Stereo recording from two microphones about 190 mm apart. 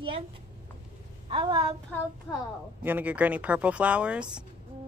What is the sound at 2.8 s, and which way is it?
Speech, 10° right (ahead or behind).